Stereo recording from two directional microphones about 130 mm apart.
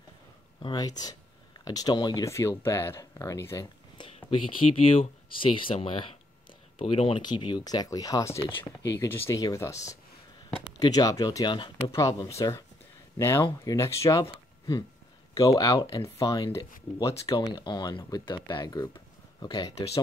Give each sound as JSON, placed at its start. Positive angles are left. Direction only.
{"t": 0.7, "sound": "speech", "side_deg": 30}
{"t": 4.3, "sound": "speech", "side_deg": 40}
{"t": 11.9, "sound": "speech", "side_deg": 25}
{"t": 17.5, "sound": "speech", "side_deg": 35}